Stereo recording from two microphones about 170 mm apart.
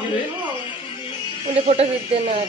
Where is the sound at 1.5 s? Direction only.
35° right (ahead or behind).